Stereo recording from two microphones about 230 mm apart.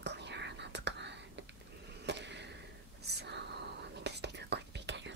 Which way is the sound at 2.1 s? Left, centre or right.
Right.